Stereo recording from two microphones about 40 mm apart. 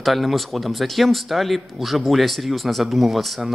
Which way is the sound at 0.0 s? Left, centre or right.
Centre.